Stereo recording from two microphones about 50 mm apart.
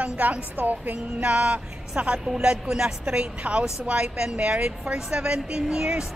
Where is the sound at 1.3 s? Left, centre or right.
Right.